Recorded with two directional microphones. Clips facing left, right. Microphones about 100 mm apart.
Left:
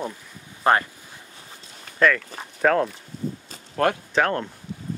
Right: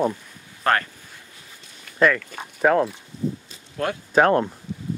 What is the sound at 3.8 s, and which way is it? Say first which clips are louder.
Speech: left 5 dB; 60° left (ahead or behind).